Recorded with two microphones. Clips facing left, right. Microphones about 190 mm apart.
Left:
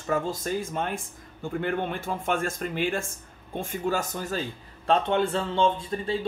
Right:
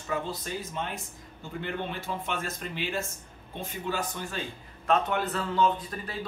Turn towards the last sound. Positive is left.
turn(degrees=25)  # may be behind; listen again after turning